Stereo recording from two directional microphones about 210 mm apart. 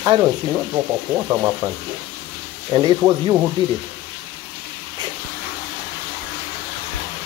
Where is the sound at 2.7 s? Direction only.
15° right (ahead or behind).